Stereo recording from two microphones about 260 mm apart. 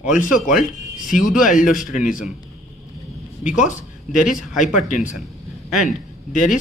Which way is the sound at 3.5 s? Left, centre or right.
Left.